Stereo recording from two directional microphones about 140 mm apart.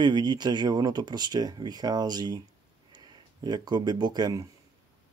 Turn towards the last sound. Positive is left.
turn(degrees=-30)  # may be behind; listen again after turning